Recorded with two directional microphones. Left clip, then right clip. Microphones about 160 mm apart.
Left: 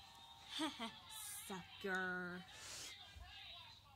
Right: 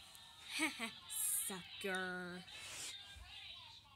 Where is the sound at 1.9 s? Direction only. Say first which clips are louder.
Left 1 dB; 20° right (ahead or behind).